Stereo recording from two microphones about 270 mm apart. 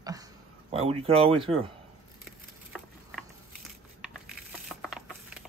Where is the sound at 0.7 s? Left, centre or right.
Right.